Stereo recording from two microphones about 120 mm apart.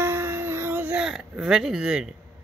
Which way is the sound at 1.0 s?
5° right (ahead or behind).